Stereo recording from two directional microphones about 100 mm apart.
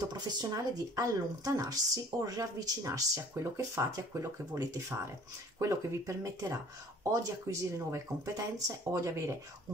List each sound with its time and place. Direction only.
0.0 s speech: 40° right (ahead or behind)